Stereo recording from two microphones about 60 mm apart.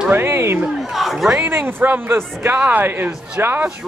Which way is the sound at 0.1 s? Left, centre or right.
Right.